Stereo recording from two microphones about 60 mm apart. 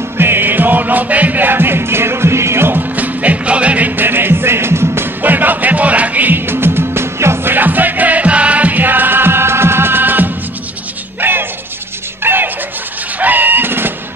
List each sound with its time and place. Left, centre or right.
0.2 s music: right
7.5 s music: right
13.2 s a sound: right